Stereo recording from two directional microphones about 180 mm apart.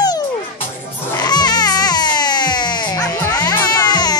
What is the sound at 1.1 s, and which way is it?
Baby cry, 20° left (ahead or behind).